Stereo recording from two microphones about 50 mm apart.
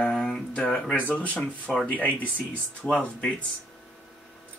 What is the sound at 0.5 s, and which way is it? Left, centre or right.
Speech, left.